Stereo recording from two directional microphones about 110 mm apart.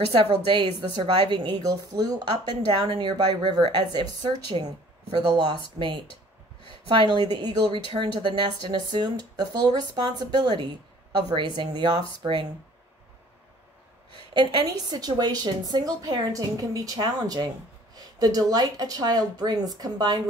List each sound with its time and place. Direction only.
0.1 s a woman's voice: 50° right (ahead or behind)
7.0 s a woman's voice: 45° right (ahead or behind)
14.1 s a woman's voice: 45° right (ahead or behind)